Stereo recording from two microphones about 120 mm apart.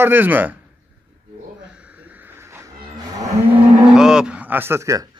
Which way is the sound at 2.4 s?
20° right (ahead or behind).